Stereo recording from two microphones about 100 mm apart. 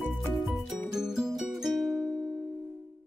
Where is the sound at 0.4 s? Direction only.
Centre (ahead or behind).